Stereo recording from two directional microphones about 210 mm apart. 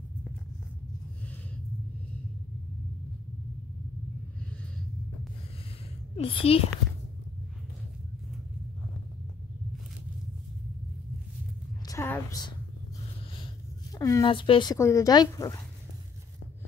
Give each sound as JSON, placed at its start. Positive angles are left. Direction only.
{"t": 6.1, "sound": "a child's voice", "side_deg": 25}
{"t": 11.8, "sound": "a sound", "side_deg": 15}
{"t": 13.9, "sound": "speech", "side_deg": 15}